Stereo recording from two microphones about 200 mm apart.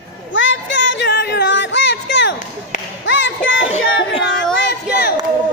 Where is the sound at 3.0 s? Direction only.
70° left (ahead or behind).